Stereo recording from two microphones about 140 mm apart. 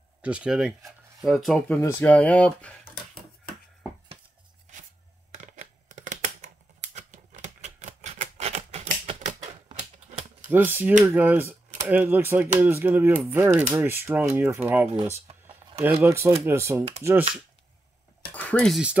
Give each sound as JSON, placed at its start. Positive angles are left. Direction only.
{"t": 0.2, "sound": "speech", "side_deg": -10}
{"t": 1.7, "sound": "speech", "side_deg": 15}
{"t": 5.3, "sound": "a sound", "side_deg": -65}
{"t": 9.0, "sound": "typewriter", "side_deg": -60}
{"t": 10.5, "sound": "speech", "side_deg": -15}
{"t": 15.2, "sound": "a sound", "side_deg": -45}
{"t": 15.8, "sound": "speech", "side_deg": -15}
{"t": 18.3, "sound": "cutlery", "side_deg": 10}
{"t": 18.7, "sound": "speech", "side_deg": -5}